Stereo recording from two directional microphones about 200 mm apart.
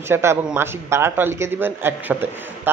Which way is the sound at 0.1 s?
10° right (ahead or behind).